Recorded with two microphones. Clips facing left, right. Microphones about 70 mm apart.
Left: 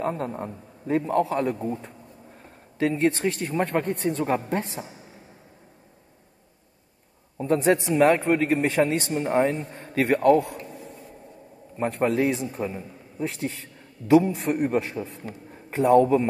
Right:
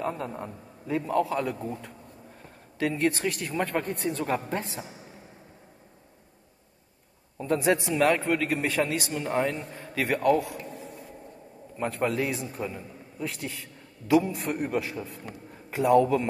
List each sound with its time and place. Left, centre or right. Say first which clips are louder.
0.4 s a man's voice: left 4 dB; left
7.4 s a man's voice: left 4 dB; left
7.7 s a man's voice: left 5 dB; left
11.9 s a man's voice: left 5 dB; left